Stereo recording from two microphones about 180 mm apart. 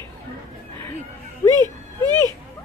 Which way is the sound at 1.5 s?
20° right (ahead or behind).